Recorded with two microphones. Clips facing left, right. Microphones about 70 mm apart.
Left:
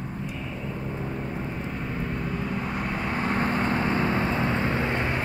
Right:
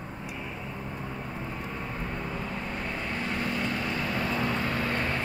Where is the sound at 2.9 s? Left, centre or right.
Left.